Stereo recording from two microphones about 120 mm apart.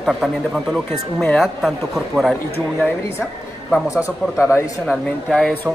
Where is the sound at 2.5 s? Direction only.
15° left (ahead or behind).